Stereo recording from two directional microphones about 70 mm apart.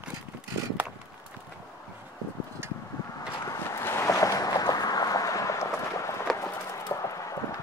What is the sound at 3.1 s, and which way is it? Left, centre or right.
Vehicle, left.